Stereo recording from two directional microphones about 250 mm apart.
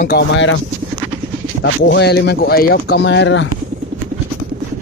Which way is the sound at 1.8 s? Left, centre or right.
Left.